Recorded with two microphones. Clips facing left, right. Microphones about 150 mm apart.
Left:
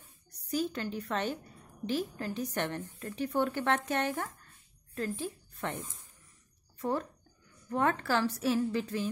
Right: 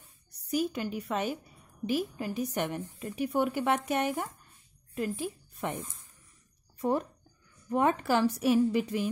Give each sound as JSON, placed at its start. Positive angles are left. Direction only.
{"t": 0.5, "sound": "a woman's voice", "side_deg": -10}